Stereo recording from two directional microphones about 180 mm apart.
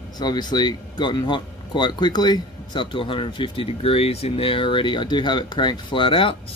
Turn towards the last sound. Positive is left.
turn(degrees=30)  # may be behind; listen again after turning